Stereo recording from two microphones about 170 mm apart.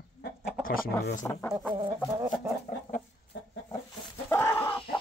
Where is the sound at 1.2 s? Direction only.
20° left (ahead or behind).